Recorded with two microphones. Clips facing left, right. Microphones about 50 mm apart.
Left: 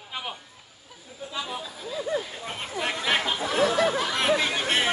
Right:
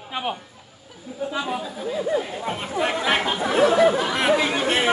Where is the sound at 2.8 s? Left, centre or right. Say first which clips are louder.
Right 4 dB; right.